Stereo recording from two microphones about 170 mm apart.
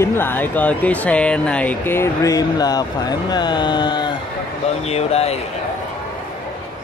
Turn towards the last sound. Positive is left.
turn(degrees=35)  # may be behind; listen again after turning